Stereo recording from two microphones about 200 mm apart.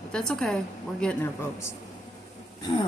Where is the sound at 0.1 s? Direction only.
5° left (ahead or behind).